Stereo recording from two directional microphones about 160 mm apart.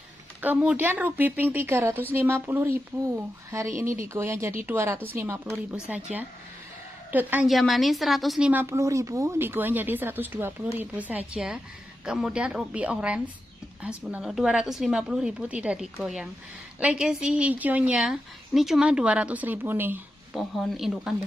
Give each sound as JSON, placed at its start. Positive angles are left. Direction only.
{"t": 0.4, "sound": "a woman's voice", "side_deg": -10}
{"t": 5.9, "sound": "a woman's voice", "side_deg": -5}
{"t": 7.1, "sound": "a woman's voice", "side_deg": -10}
{"t": 7.4, "sound": "a woman's voice", "side_deg": 0}
{"t": 20.3, "sound": "a woman's voice", "side_deg": 0}